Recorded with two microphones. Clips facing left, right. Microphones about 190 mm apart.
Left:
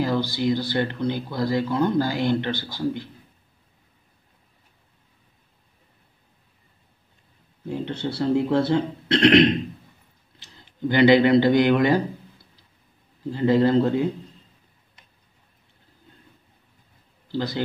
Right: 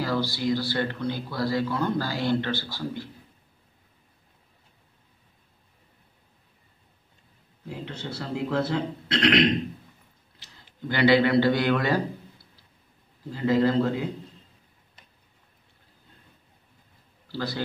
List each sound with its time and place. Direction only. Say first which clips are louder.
0.0 s speech: left 4 dB; 20° left (ahead or behind)
7.6 s speech: left 8 dB; 30° left (ahead or behind)
10.4 s speech: left 9 dB; 20° left (ahead or behind)
13.3 s speech: left 4 dB; 25° left (ahead or behind)
17.3 s speech: left 4 dB; 20° left (ahead or behind)